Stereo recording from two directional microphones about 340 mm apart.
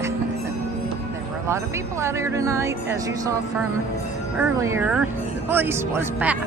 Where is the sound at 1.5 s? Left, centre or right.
Centre.